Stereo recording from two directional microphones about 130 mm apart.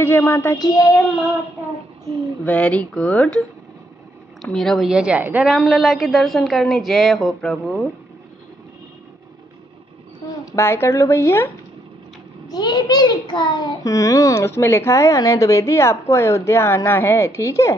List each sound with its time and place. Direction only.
0.0 s a child's voice: 15° left (ahead or behind)
2.4 s a woman's voice: 10° left (ahead or behind); by 5.5 s 10° right (ahead or behind)
5.5 s a woman's voice: centre (ahead or behind)
10.4 s a child's voice: 20° left (ahead or behind)